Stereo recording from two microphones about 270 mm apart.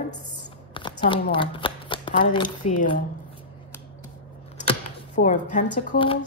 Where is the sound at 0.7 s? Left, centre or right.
Centre.